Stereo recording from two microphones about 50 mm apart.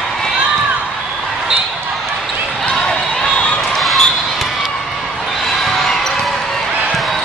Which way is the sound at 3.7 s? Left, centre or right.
Centre.